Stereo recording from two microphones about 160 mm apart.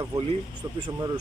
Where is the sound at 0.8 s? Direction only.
25° right (ahead or behind).